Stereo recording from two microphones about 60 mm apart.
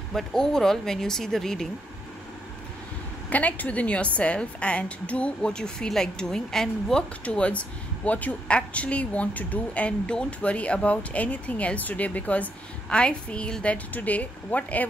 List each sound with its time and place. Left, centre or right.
0.1 s speech: centre
3.3 s a woman's voice: left; by 7.1 s centre
7.2 s a woman's voice: left